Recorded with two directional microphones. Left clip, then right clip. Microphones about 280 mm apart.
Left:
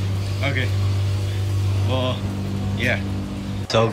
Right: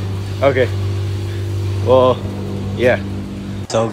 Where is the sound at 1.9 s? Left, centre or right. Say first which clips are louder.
Right 14 dB; left.